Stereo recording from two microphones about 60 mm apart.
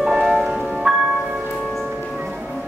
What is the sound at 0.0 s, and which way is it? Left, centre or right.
Music, centre.